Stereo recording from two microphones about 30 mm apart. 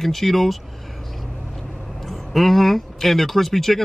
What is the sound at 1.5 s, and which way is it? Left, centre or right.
Vehicle, centre.